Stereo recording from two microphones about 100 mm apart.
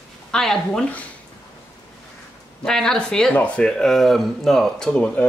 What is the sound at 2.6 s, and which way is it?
Speech, 5° left (ahead or behind).